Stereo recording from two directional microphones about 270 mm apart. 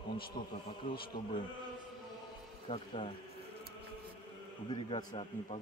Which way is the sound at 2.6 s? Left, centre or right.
Centre.